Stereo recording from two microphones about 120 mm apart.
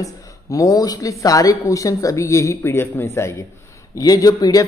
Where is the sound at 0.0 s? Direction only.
25° left (ahead or behind).